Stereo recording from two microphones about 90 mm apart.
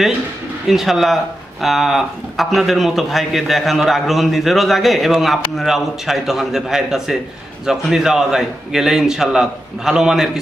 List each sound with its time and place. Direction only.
0.7 s speech: 5° right (ahead or behind)